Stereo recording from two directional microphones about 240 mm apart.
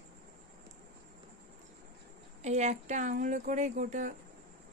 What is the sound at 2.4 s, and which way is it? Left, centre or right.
Speech, right.